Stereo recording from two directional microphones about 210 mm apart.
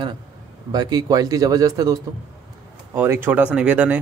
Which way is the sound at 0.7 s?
20° right (ahead or behind).